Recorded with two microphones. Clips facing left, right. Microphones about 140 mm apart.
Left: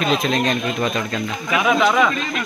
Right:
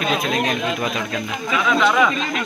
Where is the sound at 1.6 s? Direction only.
15° left (ahead or behind).